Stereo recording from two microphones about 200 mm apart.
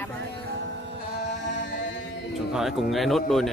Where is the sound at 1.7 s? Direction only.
65° left (ahead or behind).